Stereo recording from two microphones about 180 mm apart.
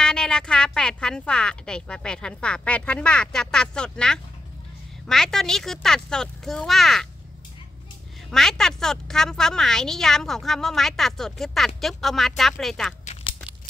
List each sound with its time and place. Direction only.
0.0 s a woman's voice: 5° left (ahead or behind)
8.3 s a woman's voice: centre (ahead or behind)
13.0 s a sound: 35° left (ahead or behind)